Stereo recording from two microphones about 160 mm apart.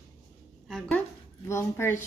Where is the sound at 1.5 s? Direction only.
15° left (ahead or behind).